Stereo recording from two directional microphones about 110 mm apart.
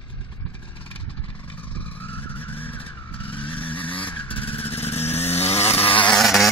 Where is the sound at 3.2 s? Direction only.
50° left (ahead or behind).